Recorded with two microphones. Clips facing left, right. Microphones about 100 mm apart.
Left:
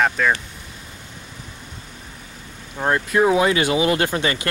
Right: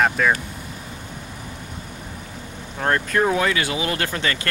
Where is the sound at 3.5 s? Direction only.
25° left (ahead or behind).